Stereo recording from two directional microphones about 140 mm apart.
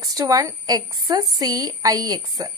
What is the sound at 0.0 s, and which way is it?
A woman's voice, 25° right (ahead or behind).